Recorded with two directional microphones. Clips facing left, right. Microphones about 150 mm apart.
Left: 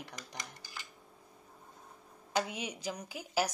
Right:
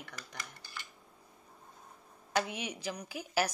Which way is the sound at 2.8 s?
20° left (ahead or behind).